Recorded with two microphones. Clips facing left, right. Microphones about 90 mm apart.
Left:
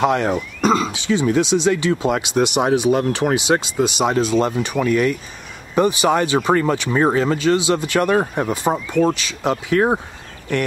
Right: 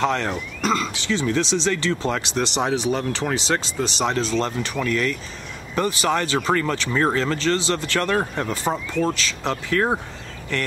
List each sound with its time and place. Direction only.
0.0 s speech: 15° left (ahead or behind)